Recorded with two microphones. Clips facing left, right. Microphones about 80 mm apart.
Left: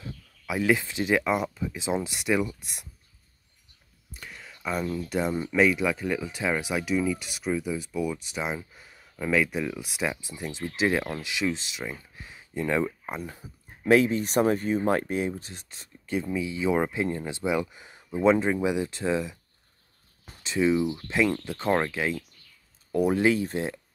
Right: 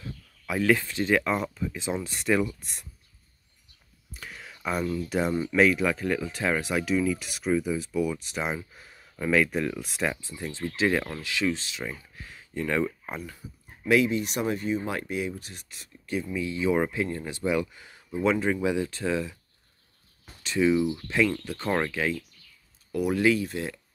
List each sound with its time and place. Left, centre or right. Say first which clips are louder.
0.5 s speech: right 1 dB; centre
2.1 s speech: right 1 dB; centre
4.1 s a sound: right 1 dB; centre
5.1 s speech: right 1 dB; centre
13.8 s speech: left 2 dB; left
16.3 s speech: right 1 dB; left
20.4 s speech: right 1 dB; centre
22.9 s speech: left 1 dB; left